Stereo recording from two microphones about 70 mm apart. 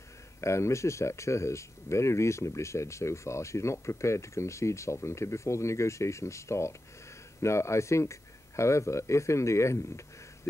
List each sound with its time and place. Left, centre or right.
0.4 s speech: left